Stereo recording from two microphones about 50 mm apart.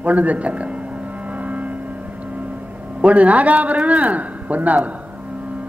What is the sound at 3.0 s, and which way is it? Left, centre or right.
Speech, right.